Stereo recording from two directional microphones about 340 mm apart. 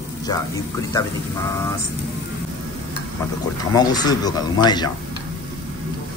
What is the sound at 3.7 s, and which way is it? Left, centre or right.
Speech, centre.